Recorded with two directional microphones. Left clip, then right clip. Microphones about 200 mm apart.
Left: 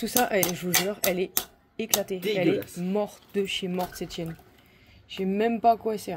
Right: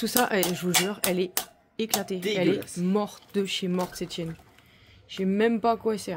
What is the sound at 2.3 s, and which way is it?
Speech, 25° right (ahead or behind).